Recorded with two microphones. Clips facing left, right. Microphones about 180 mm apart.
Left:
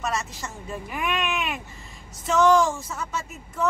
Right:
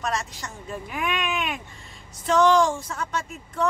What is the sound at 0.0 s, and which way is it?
Speech, centre (ahead or behind).